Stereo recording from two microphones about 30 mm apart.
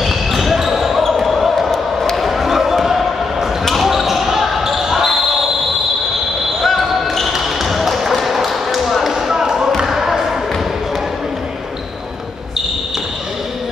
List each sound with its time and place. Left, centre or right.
0.0 s basketball bounce: centre
6.6 s basketball bounce: centre
9.1 s basketball bounce: centre